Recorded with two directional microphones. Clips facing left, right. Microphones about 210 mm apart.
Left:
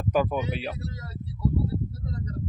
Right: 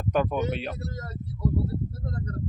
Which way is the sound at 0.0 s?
5° left (ahead or behind).